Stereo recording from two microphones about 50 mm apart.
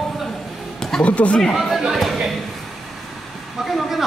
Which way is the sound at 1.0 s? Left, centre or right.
Left.